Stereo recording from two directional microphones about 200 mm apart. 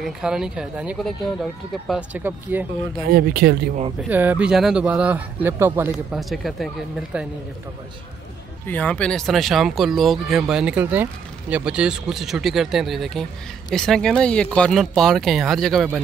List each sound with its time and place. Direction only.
0.0 s speech: 5° right (ahead or behind)
3.1 s speech: 50° right (ahead or behind)
4.1 s speech: 10° right (ahead or behind)
8.6 s speech: 10° left (ahead or behind)